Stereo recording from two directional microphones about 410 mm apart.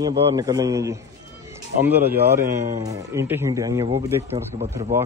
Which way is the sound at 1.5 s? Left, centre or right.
Centre.